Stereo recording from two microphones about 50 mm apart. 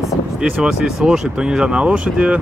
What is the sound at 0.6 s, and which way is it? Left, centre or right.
Speech, centre.